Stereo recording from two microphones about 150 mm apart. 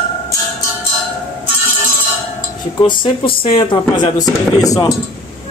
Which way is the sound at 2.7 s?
30° left (ahead or behind).